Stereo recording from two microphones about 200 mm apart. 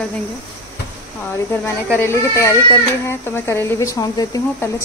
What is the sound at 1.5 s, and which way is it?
Speech, 10° left (ahead or behind).